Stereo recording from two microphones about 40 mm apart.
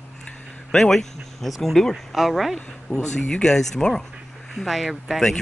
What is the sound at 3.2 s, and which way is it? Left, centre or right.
Speech, left.